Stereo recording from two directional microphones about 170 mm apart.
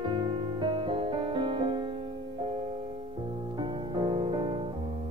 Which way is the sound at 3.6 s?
30° right (ahead or behind).